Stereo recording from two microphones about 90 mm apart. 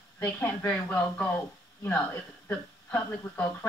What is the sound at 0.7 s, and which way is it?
Speech, 15° left (ahead or behind).